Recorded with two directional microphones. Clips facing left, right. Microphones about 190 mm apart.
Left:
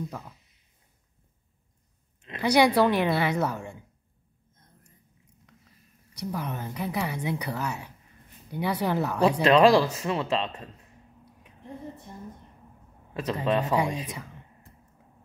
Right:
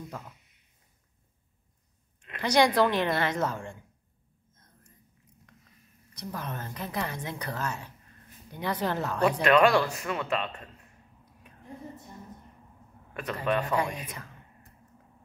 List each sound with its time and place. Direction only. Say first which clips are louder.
2.4 s speech: left 2 dB; 10° left (ahead or behind)
6.1 s speech: left 4 dB; 15° left (ahead or behind)
9.4 s speech: left 3 dB; 30° left (ahead or behind)
13.1 s speech: left 3 dB; 25° left (ahead or behind)